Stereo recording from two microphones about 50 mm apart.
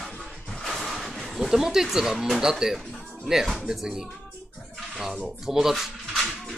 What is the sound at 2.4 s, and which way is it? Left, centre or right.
Speech, centre.